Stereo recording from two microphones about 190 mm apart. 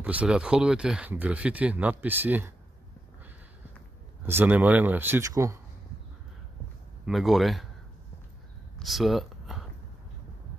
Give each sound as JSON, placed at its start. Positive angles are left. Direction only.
{"t": 0.0, "sound": "speech", "side_deg": -5}
{"t": 4.3, "sound": "speech", "side_deg": -10}
{"t": 7.1, "sound": "speech", "side_deg": 0}
{"t": 8.7, "sound": "a sound", "side_deg": 0}